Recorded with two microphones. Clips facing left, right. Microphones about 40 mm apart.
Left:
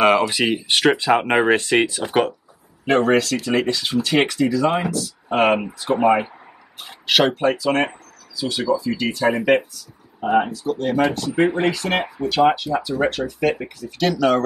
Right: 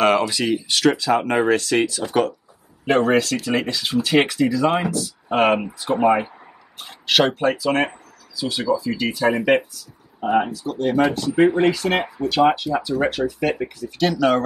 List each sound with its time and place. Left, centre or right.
0.0 s speech: centre
0.5 s speech: left
2.8 s speech: centre